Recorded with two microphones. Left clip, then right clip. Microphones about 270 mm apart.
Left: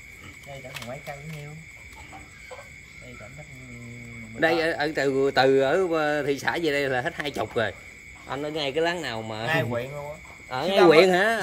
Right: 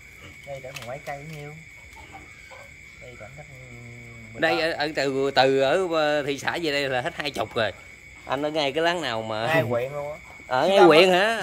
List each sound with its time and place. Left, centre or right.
4.4 s speech: centre
9.5 s a man's voice: right
10.5 s speech: centre